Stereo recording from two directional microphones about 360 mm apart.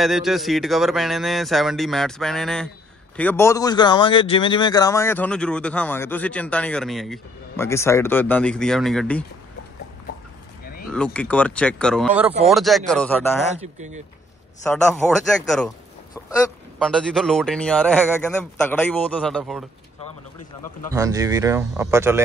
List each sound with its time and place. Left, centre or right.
0.0 s a man's voice: centre
10.6 s vehicle: left
10.9 s a man's voice: centre
13.6 s speech: centre
14.7 s a man's voice: centre
16.7 s a man's voice: centre
20.9 s speech: centre